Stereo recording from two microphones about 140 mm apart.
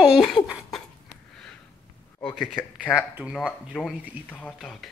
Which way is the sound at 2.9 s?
20° left (ahead or behind).